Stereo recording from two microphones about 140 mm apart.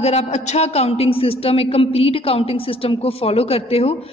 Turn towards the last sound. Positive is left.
turn(degrees=45)  # may be behind; listen again after turning